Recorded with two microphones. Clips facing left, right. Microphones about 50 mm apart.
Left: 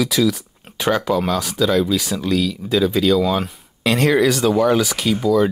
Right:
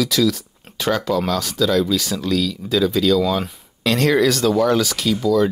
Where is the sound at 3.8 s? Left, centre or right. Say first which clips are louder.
Left 1 dB; centre.